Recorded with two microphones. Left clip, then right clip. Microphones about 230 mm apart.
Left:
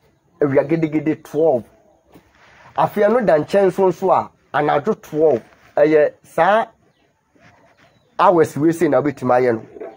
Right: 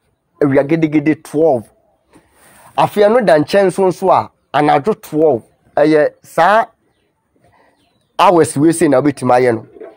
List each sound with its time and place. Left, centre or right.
0.4 s speech: right
2.7 s speech: right
8.2 s speech: right